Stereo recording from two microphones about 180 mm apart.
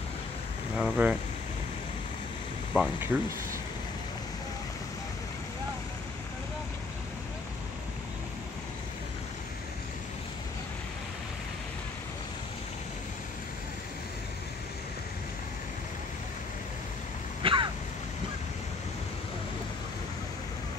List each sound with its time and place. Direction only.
0.7 s speech: 5° right (ahead or behind)
2.7 s speech: 5° right (ahead or behind)
17.4 s a sound: 30° right (ahead or behind)